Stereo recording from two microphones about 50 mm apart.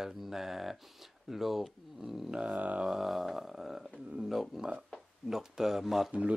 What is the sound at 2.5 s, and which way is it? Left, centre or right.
Speech, right.